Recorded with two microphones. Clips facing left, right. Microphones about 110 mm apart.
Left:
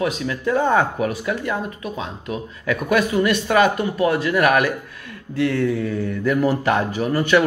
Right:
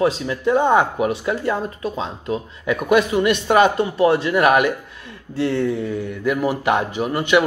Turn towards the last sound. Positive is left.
turn(degrees=-20)  # may be behind; listen again after turning